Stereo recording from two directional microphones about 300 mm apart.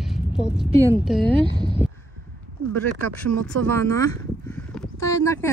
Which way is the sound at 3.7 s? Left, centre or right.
Centre.